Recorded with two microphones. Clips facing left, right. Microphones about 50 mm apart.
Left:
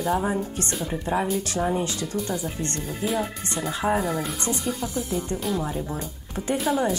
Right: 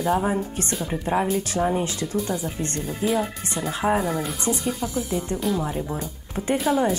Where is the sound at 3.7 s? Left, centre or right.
Centre.